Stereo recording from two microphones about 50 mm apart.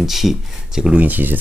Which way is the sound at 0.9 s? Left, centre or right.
Right.